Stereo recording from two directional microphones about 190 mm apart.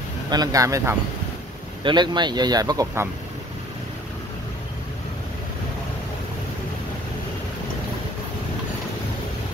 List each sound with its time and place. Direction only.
0.3 s speech: 20° right (ahead or behind)